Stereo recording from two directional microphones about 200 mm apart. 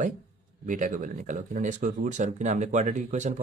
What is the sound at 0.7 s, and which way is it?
Speech, 40° right (ahead or behind).